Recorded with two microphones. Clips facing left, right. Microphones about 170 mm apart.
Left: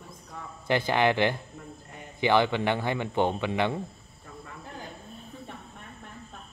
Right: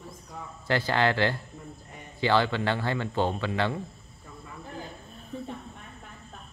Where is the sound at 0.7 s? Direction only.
20° left (ahead or behind).